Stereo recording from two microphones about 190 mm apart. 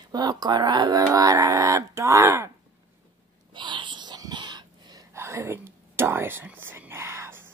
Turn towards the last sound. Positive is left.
turn(degrees=-15)  # may be behind; listen again after turning